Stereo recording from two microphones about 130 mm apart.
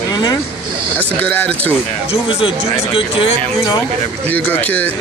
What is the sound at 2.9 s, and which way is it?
Speech, 40° left (ahead or behind).